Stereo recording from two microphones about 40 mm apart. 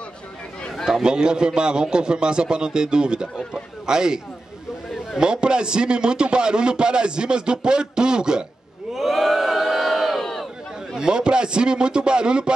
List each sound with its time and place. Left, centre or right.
1.0 s a man's voice: right
5.2 s a man's voice: right
8.9 s crowd: centre
11.0 s a man's voice: right